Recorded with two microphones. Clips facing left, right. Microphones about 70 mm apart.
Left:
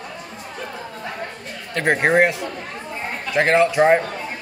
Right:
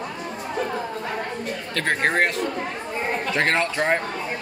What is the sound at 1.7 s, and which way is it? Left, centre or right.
Speech, centre.